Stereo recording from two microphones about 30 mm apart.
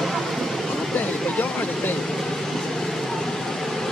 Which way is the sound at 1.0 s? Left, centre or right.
Left.